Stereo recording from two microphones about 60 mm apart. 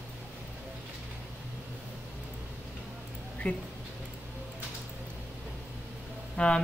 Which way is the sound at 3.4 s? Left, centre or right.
Centre.